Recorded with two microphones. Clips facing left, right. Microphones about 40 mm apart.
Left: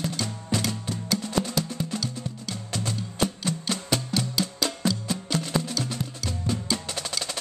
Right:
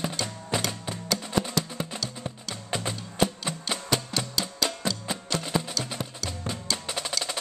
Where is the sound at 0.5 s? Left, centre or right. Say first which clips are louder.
Left 2 dB; centre.